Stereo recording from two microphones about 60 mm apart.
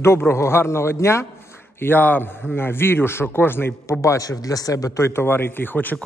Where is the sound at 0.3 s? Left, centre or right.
Left.